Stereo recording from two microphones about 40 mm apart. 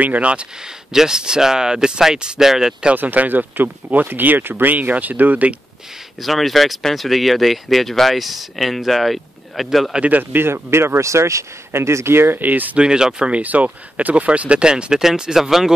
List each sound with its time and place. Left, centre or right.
0.0 s speech: right
0.9 s speech: centre
3.0 s speech: right
6.2 s speech: centre
10.3 s speech: right
12.4 s speech: right
12.7 s speech: right
13.3 s speech: right
14.6 s speech: right